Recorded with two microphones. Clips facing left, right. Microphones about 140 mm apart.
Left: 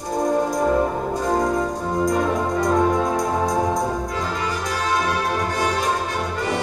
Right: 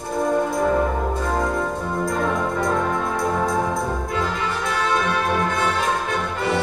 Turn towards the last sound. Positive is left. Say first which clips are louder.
# right 1 dB
turn(degrees=40)  # may be behind; listen again after turning